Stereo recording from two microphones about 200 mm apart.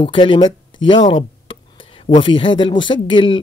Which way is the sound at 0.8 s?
25° left (ahead or behind).